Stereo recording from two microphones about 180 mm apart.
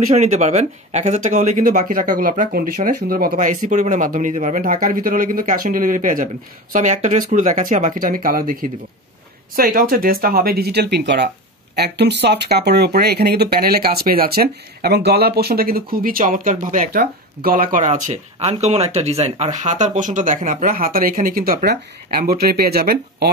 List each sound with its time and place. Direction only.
0.1 s speech: 35° right (ahead or behind); by 23.3 s 60° right (ahead or behind)